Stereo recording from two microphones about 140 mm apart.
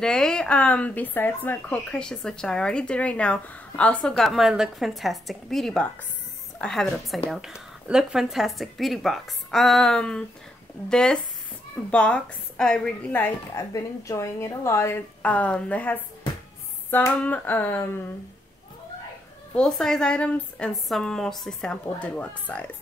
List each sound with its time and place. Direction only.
0.0 s a woman's voice: 5° left (ahead or behind)
13.7 s a woman's voice: 20° left (ahead or behind)
19.5 s a woman's voice: 5° left (ahead or behind)